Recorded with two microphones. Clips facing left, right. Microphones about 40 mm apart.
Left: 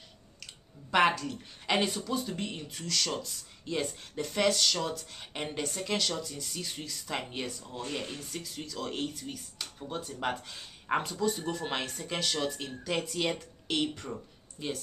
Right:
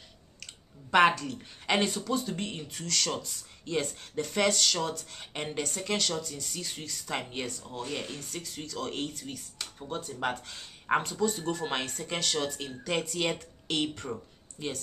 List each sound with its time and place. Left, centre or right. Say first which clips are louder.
0.9 s speech: right 3 dB; centre